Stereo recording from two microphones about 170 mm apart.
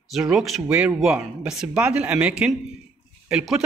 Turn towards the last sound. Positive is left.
turn(degrees=0)  # may be behind; listen again after turning